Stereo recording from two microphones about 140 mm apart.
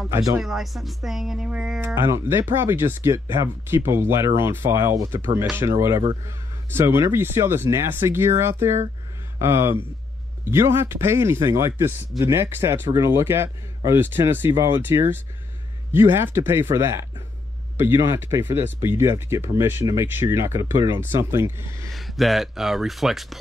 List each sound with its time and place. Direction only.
0.1 s speech: 20° right (ahead or behind)
0.4 s speech: centre (ahead or behind)
2.0 s a man's voice: 20° right (ahead or behind)
21.9 s speech: centre (ahead or behind)